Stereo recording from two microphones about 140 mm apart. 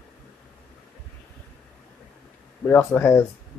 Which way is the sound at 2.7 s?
15° left (ahead or behind).